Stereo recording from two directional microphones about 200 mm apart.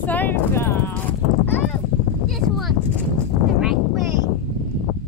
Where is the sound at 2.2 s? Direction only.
Centre (ahead or behind).